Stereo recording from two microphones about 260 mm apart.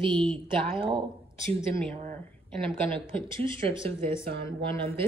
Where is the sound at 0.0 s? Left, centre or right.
Centre.